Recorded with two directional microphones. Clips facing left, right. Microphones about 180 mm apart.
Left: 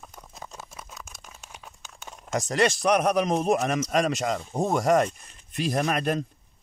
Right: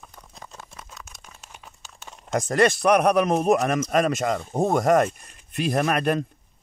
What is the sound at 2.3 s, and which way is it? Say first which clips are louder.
A man's voice: right 4 dB; 55° right (ahead or behind).